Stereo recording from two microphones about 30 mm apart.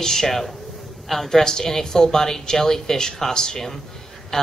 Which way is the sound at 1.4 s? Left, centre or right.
Centre.